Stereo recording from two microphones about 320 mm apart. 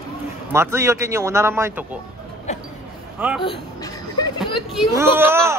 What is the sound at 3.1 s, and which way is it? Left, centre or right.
Speech, centre.